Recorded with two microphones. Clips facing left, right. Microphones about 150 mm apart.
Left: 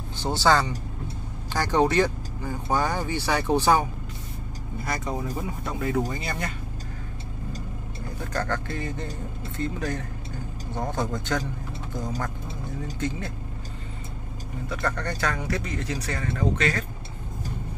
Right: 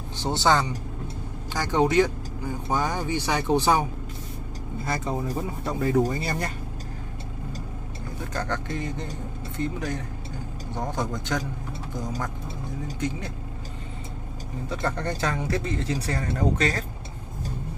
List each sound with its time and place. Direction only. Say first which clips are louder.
0.2 s a man's voice: left 1 dB; 20° right (ahead or behind)
4.8 s speech: right 2 dB; 25° right (ahead or behind)
8.3 s a man's voice: left 1 dB; 20° right (ahead or behind)
14.7 s a man's voice: right 1 dB; 25° right (ahead or behind)